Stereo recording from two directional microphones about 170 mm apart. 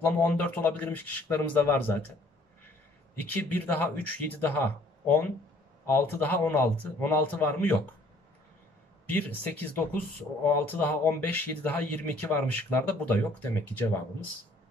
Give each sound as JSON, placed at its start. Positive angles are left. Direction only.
{"t": 0.0, "sound": "speech", "side_deg": 10}
{"t": 3.3, "sound": "speech", "side_deg": 10}
{"t": 9.1, "sound": "speech", "side_deg": 10}